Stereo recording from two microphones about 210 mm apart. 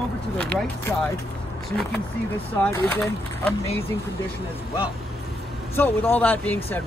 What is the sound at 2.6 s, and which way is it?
Speech, 5° left (ahead or behind).